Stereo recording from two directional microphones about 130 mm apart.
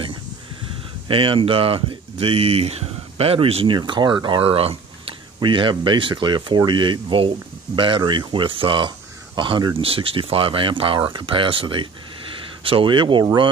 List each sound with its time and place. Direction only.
1.0 s speech: 45° right (ahead or behind)